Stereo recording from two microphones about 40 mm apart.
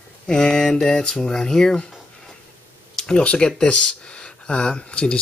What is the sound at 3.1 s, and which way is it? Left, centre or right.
Speech, left.